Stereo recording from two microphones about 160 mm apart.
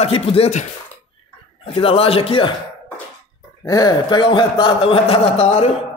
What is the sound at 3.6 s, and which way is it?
A man's voice, 25° left (ahead or behind).